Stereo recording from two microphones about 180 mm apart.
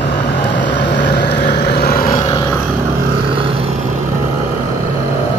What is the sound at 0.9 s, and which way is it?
Vehicle, 70° left (ahead or behind).